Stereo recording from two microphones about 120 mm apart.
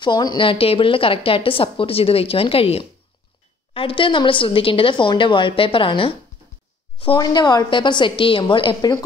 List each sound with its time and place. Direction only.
0.0 s a woman's voice: 35° left (ahead or behind)
7.2 s a woman's voice: 35° left (ahead or behind)